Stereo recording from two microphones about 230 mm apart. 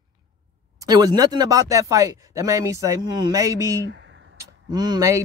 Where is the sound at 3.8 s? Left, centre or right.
Right.